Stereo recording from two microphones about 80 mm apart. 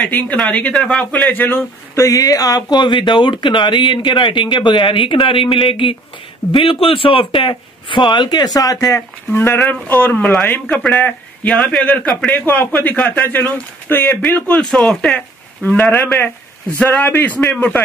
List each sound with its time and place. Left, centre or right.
0.0 s speech: centre
2.0 s speech: left